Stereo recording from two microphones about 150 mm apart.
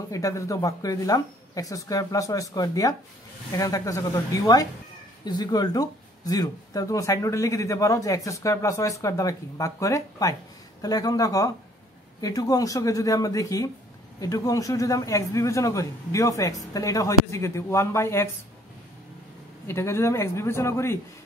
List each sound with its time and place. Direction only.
0.1 s speech: 20° left (ahead or behind)
19.7 s speech: 20° left (ahead or behind)